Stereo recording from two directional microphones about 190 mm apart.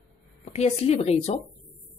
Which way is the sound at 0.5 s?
35° left (ahead or behind).